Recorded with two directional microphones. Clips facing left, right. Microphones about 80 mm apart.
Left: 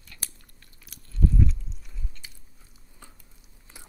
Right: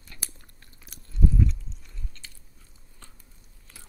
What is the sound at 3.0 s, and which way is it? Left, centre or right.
Biting, centre.